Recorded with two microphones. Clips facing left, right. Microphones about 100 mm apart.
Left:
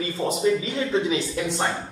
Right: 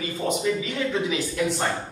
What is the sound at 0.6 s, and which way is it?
A man's voice, 25° left (ahead or behind).